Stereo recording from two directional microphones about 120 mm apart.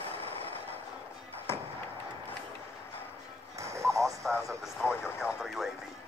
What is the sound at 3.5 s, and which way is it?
Music, 25° right (ahead or behind).